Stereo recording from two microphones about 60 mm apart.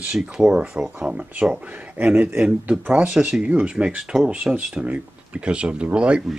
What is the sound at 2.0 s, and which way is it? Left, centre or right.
Speech, right.